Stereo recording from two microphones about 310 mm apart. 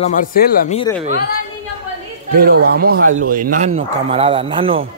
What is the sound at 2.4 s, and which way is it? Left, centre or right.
Speech, right.